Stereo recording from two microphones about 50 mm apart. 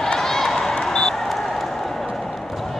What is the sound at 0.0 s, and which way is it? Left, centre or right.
Basketball bounce, centre.